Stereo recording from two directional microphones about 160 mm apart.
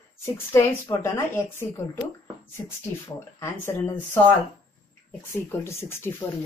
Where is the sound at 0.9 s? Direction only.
15° left (ahead or behind).